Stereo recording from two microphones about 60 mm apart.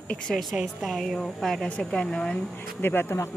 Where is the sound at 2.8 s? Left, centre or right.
Left.